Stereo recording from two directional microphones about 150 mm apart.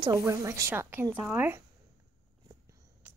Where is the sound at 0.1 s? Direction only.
20° right (ahead or behind).